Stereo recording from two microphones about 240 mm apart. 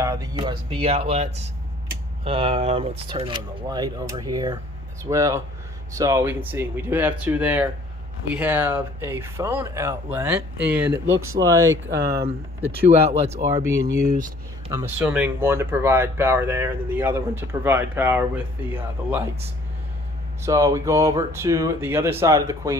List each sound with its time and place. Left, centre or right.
0.0 s speech: centre
12.0 s speech: right
13.5 s speech: centre
20.4 s speech: centre